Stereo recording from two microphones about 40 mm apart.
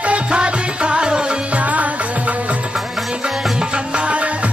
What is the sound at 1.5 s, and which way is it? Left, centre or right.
Music, right.